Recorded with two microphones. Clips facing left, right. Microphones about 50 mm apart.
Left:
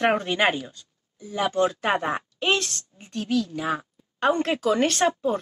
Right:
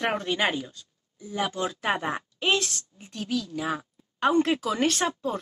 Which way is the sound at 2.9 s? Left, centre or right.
Left.